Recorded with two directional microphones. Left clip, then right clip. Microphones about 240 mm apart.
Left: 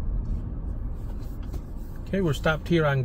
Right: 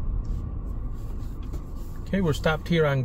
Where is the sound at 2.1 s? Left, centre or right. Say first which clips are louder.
Even; centre.